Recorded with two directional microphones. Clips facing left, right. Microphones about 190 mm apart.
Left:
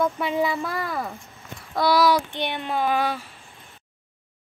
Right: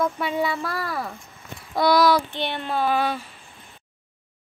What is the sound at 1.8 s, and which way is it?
Child singing, 5° left (ahead or behind).